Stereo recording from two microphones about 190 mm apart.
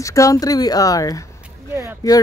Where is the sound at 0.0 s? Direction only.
15° left (ahead or behind).